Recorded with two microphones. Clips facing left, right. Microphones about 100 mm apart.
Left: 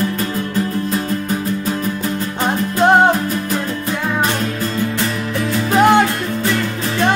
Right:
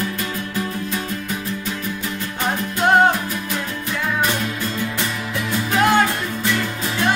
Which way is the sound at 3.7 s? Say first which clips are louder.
Left 4 dB; 40° left (ahead or behind).